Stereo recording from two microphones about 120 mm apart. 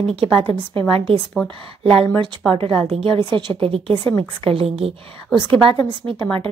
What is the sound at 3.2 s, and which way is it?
Speech, 40° right (ahead or behind).